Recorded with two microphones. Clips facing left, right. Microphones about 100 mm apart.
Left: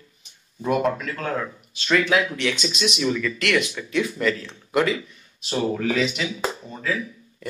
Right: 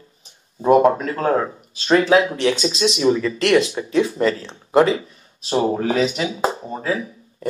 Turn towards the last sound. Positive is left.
turn(degrees=-35)  # may be behind; listen again after turning